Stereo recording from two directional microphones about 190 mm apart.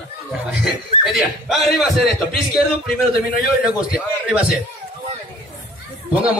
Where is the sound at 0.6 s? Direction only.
Centre (ahead or behind).